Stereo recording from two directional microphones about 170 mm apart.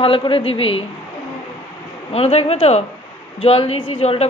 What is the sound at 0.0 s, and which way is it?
Speech, 30° left (ahead or behind).